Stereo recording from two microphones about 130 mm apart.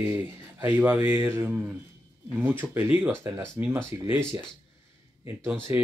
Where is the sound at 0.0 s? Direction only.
15° right (ahead or behind).